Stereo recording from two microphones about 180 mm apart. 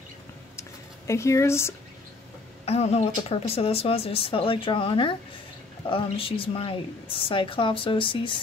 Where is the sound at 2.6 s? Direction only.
35° left (ahead or behind).